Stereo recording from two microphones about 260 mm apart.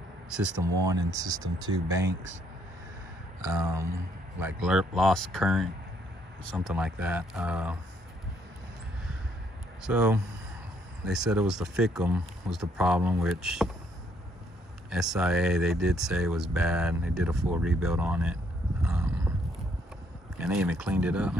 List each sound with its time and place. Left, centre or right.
0.3 s speech: centre
4.4 s speech: centre
9.8 s speech: centre
14.9 s speech: centre
20.3 s speech: centre